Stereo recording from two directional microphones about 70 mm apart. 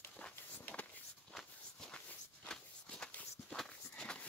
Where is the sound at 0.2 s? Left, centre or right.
Centre.